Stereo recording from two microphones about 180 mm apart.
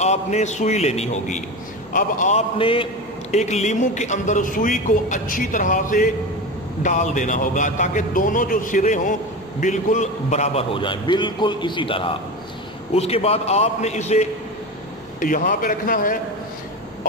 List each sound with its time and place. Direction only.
0.0 s a man's voice: 40° left (ahead or behind)
2.6 s a man's voice: 30° left (ahead or behind)
15.1 s a man's voice: 50° left (ahead or behind)